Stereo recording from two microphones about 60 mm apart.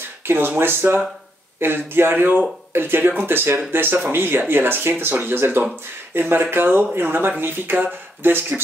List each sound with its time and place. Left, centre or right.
0.2 s speech: right